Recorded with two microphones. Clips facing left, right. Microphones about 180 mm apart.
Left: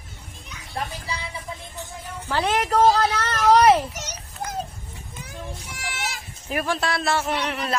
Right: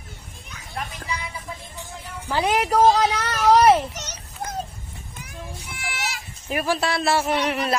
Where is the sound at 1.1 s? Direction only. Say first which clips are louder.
Right 2 dB; 30° left (ahead or behind).